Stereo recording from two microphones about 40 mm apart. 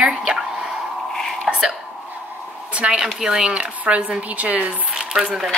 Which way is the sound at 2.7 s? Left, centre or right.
Right.